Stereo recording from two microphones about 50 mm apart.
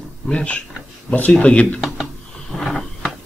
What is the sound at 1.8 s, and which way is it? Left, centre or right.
Speech, centre.